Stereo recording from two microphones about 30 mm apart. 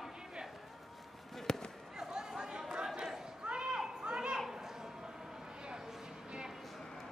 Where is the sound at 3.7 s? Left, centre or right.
Right.